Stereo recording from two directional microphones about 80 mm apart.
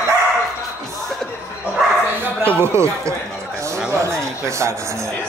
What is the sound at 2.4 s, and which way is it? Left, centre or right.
Speech, right.